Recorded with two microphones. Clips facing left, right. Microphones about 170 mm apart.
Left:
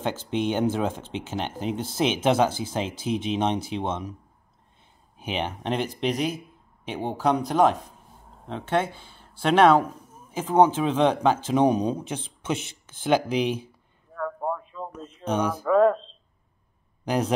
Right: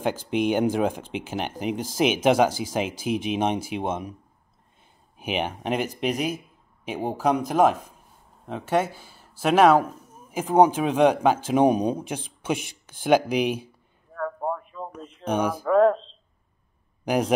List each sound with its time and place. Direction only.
0.0 s speech: 10° right (ahead or behind)
5.2 s speech: 10° right (ahead or behind)
14.1 s a sound: centre (ahead or behind)
15.2 s speech: 10° right (ahead or behind)
17.0 s speech: 10° right (ahead or behind)